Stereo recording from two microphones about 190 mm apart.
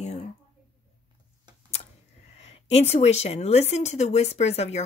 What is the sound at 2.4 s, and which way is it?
Speech, 35° left (ahead or behind).